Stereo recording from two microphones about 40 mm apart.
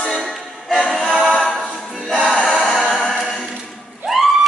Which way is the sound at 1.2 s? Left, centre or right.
Centre.